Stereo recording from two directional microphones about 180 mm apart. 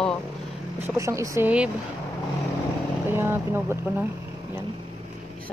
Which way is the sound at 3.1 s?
15° right (ahead or behind).